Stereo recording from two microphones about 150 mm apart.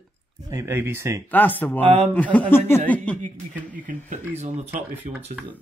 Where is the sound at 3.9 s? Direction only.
50° right (ahead or behind).